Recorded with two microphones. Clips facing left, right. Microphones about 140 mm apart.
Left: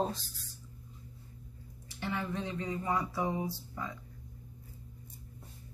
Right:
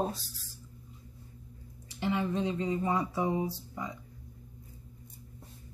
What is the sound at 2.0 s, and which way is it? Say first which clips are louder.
Mantra: right 6 dB; 20° right (ahead or behind).